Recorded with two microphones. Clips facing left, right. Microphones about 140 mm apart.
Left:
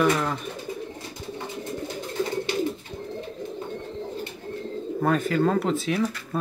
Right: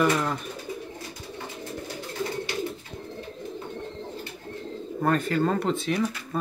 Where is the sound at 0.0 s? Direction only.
Centre (ahead or behind).